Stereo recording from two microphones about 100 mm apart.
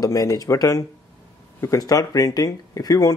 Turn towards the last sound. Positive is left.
turn(degrees=40)  # may be behind; listen again after turning